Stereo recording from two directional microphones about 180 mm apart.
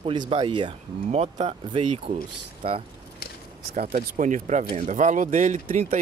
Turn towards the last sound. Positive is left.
turn(degrees=-40)  # may be behind; listen again after turning